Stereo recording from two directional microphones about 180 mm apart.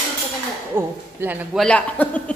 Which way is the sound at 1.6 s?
5° left (ahead or behind).